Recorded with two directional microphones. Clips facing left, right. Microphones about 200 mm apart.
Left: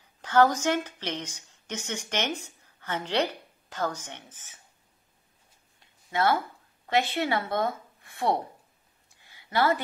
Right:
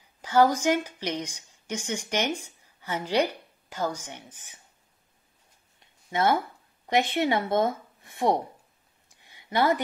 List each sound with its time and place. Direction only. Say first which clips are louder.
0.2 s a woman's voice: right 1 dB; 10° right (ahead or behind)
6.0 s speech: right 1 dB; 20° right (ahead or behind)
9.1 s a sound: right 1 dB; 20° right (ahead or behind)